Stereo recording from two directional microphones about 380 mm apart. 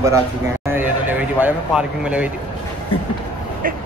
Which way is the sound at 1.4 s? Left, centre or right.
Centre.